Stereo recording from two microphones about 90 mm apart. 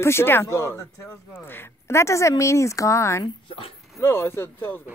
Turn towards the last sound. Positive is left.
turn(degrees=30)  # may be behind; listen again after turning